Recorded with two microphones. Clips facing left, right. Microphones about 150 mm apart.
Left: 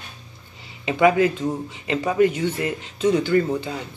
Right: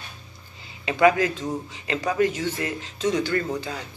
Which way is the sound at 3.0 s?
10° left (ahead or behind).